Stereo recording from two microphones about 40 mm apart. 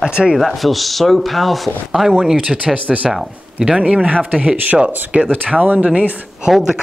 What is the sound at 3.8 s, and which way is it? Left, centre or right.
Speech, right.